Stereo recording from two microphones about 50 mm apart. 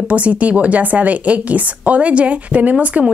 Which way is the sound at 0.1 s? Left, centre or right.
Right.